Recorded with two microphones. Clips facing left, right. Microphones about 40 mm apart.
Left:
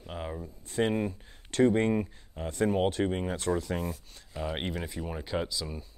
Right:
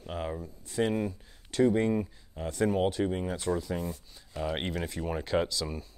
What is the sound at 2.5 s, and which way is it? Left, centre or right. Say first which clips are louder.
Speech: even; left.